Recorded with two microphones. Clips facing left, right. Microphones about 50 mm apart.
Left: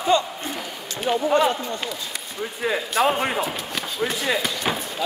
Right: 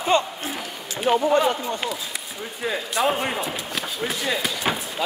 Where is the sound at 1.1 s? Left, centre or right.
Right.